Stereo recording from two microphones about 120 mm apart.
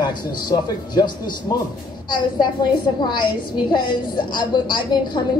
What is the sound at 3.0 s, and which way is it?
A woman's voice, 40° left (ahead or behind).